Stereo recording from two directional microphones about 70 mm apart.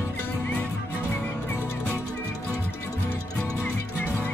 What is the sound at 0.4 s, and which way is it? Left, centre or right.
Music, centre.